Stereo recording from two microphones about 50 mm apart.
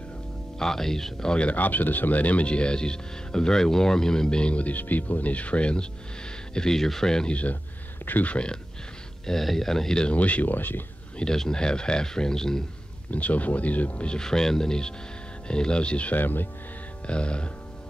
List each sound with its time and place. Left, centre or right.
0.6 s speech: centre
1.5 s speech: left
6.5 s speech: centre
8.0 s speech: left
9.2 s speech: centre
10.1 s speech: left
11.1 s speech: centre
13.1 s speech: left
14.0 s speech: centre
16.2 s speech: left
17.0 s speech: left